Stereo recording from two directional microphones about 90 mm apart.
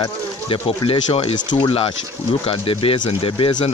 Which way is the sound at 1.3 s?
55° left (ahead or behind).